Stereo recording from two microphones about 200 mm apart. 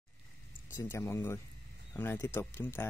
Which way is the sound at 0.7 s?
15° left (ahead or behind).